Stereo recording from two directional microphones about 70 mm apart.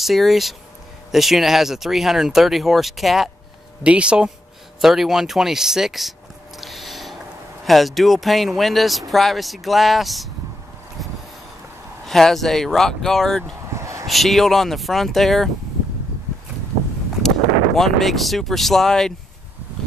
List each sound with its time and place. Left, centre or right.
0.0 s speech: centre
3.8 s speech: centre
4.8 s speech: centre
6.6 s a sound: centre
7.6 s speech: centre
12.1 s speech: centre
13.7 s a sound: right
14.0 s speech: centre
17.7 s speech: centre